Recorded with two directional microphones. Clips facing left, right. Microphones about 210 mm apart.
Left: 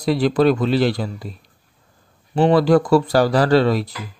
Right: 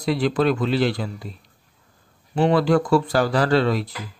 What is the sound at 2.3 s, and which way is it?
Speech, 35° left (ahead or behind).